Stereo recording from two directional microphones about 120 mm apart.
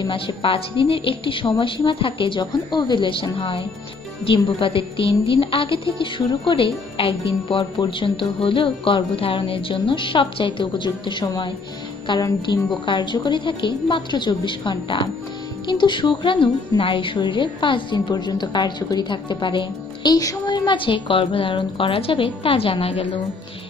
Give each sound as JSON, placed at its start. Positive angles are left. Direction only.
{"t": 0.4, "sound": "a woman's voice", "side_deg": 50}